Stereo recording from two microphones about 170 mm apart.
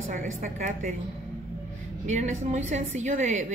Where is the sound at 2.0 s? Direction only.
45° right (ahead or behind).